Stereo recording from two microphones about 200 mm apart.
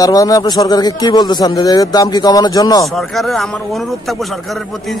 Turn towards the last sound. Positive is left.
turn(degrees=0)  # may be behind; listen again after turning